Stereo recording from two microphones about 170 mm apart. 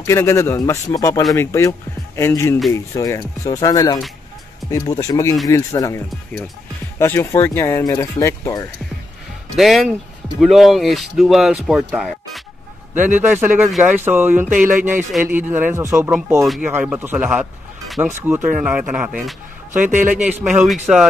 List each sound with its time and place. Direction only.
0.0 s speech: 15° left (ahead or behind)
9.6 s speech: centre (ahead or behind)
12.1 s music: centre (ahead or behind)
13.3 s speech: 10° right (ahead or behind)
18.0 s speech: 15° right (ahead or behind)
19.9 s speech: 50° right (ahead or behind)
20.2 s speech: 10° right (ahead or behind)